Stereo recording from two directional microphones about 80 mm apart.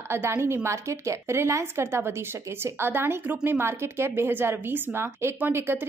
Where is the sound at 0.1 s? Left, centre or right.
Right.